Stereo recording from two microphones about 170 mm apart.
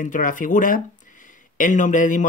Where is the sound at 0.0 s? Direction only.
50° left (ahead or behind).